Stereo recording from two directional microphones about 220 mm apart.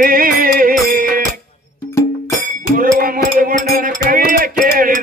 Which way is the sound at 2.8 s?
40° right (ahead or behind).